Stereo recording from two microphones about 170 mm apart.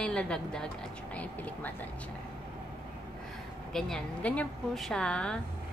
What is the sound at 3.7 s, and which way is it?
A woman's voice, 5° left (ahead or behind).